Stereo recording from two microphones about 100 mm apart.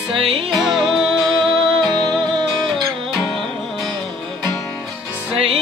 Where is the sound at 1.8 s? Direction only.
50° right (ahead or behind).